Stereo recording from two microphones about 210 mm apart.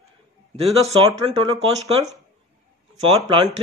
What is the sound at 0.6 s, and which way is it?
Speech, 30° right (ahead or behind).